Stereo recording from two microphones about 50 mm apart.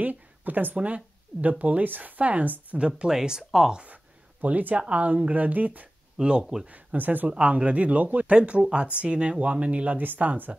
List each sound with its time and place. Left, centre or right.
0.0 s a sound: right
0.7 s speech: right
2.8 s speech: centre
3.9 s speech: right
6.1 s speech: centre
6.7 s speech: right
7.2 s speech: right
8.4 s speech: right